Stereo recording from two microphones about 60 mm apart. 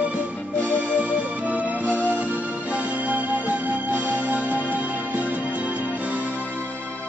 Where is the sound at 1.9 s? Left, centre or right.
Left.